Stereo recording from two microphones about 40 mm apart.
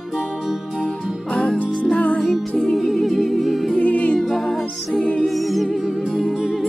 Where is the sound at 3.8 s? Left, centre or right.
Left.